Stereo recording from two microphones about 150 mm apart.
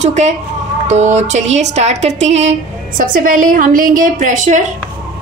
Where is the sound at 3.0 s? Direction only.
70° right (ahead or behind).